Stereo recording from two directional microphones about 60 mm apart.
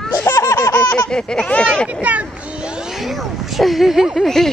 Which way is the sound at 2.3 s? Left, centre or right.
Centre.